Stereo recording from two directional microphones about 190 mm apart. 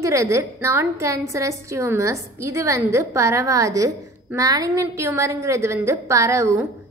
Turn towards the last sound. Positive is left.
turn(degrees=-15)  # may be behind; listen again after turning